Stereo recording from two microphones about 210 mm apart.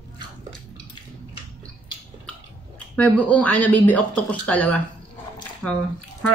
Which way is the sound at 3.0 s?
5° left (ahead or behind).